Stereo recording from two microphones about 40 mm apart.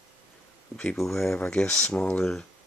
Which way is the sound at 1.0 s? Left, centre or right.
Centre.